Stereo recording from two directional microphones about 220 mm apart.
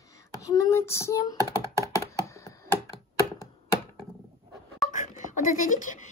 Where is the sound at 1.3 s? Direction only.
15° right (ahead or behind).